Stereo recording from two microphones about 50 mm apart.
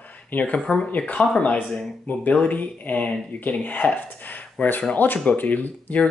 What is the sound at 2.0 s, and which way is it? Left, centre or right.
Speech, left.